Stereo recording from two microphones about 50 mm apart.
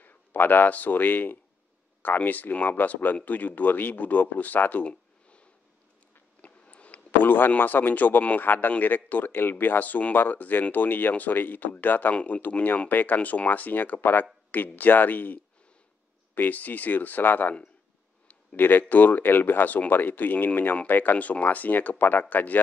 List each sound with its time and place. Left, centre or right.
0.0 s speech: left
4.8 s a sound: left
8.4 s speech: left